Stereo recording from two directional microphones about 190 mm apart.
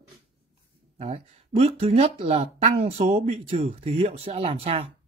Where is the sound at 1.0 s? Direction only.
35° right (ahead or behind).